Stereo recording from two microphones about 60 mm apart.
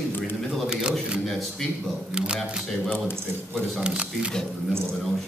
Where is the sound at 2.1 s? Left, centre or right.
Centre.